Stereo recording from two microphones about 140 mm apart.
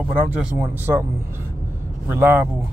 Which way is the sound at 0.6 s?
15° right (ahead or behind).